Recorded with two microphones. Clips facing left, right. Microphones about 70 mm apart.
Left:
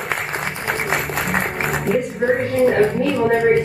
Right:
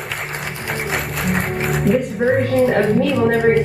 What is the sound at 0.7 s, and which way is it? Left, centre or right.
Music, centre.